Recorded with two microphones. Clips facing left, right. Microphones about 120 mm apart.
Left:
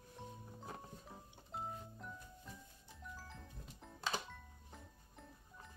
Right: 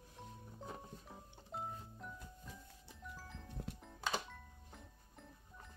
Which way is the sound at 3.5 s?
70° right (ahead or behind).